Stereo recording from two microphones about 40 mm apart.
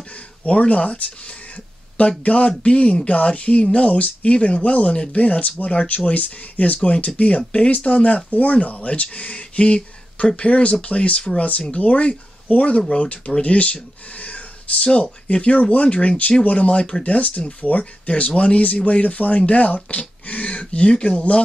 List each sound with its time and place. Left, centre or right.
0.5 s speech: left
14.2 s a sound: left
14.9 s speech: left